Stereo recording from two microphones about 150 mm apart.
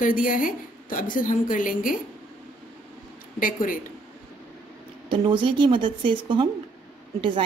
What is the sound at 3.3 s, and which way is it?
Speech, 65° left (ahead or behind).